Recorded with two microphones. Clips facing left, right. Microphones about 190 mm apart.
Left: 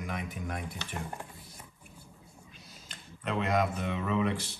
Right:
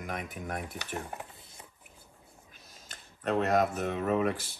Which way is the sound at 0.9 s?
20° right (ahead or behind).